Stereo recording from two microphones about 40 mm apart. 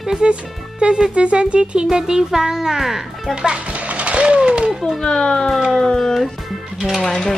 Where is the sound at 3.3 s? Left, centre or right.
Right.